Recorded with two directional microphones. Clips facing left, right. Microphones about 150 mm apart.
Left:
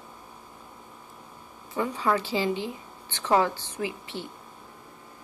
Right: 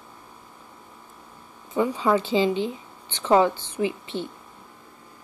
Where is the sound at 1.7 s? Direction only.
20° right (ahead or behind).